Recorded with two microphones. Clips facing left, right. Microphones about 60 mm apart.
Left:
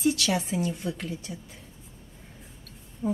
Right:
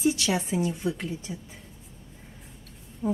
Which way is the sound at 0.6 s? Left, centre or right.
Centre.